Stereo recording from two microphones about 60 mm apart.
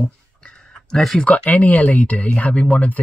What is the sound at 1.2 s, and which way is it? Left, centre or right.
Speech, left.